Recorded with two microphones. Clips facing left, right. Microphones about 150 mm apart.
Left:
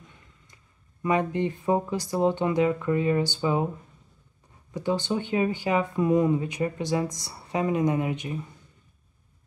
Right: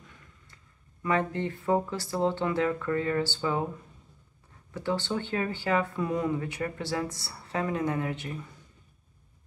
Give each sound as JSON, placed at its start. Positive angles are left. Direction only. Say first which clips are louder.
{"t": 1.0, "sound": "speech", "louder": "left 3 dB", "side_deg": 15}
{"t": 4.7, "sound": "speech", "louder": "left 3 dB", "side_deg": 15}